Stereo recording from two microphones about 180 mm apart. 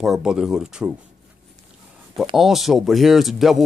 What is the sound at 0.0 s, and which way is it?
Speech, 5° right (ahead or behind).